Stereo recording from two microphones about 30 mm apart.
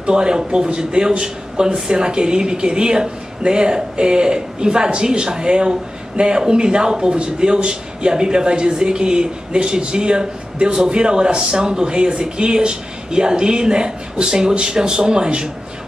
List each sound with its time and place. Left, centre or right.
0.0 s speech: right